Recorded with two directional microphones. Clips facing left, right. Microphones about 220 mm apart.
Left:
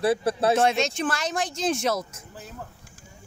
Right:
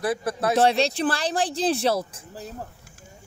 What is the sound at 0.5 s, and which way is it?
Speech, 35° right (ahead or behind).